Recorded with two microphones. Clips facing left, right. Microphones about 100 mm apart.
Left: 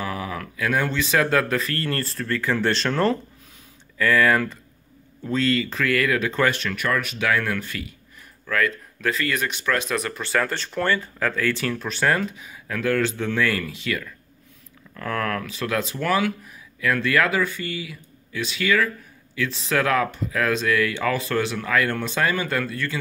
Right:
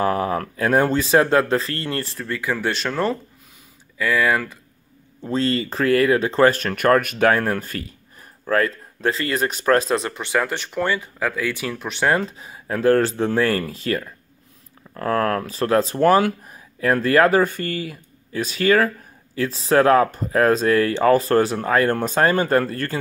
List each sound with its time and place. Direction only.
0.0 s speech: 45° right (ahead or behind); by 4.6 s 10° right (ahead or behind)
5.2 s speech: 30° right (ahead or behind)